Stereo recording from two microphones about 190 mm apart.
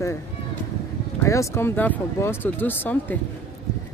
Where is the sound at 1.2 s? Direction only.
15° left (ahead or behind).